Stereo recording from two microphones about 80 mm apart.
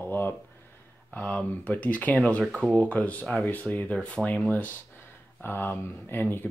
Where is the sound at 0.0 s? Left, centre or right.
Left.